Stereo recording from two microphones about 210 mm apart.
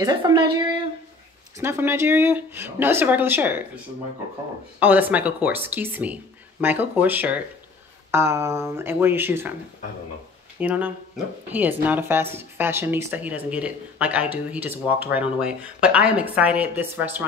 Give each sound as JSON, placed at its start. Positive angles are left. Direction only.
{"t": 0.0, "sound": "a woman's voice", "side_deg": -20}
{"t": 10.6, "sound": "a woman's voice", "side_deg": -5}